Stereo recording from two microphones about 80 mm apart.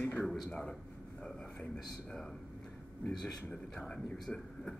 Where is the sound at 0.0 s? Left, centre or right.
Left.